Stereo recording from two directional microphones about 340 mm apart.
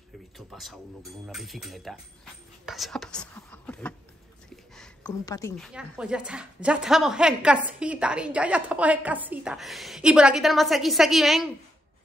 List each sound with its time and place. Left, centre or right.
0.6 s a woman's voice: centre
5.7 s a woman's voice: centre